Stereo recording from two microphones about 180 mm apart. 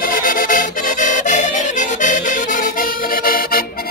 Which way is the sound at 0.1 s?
50° left (ahead or behind).